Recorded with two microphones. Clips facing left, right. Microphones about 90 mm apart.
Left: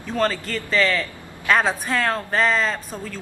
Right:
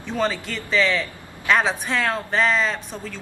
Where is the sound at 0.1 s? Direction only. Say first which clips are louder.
Left 2 dB; 5° right (ahead or behind).